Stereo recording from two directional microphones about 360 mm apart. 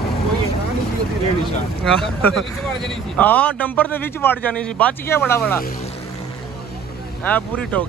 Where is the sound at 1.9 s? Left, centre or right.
Centre.